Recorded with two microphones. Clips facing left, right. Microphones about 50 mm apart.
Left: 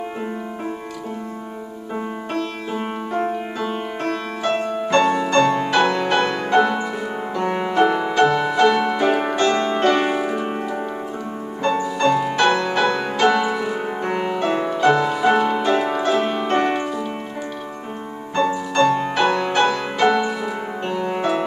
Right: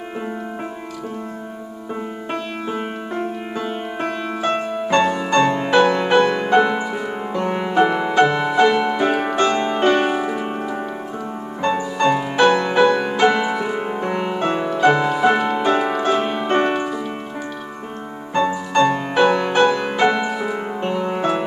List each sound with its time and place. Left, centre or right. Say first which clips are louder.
3.6 s music: even; centre
10.0 s harp: even; centre
11.6 s music: even; centre
15.6 s music: right 1 dB; centre
18.3 s music: right 2 dB; centre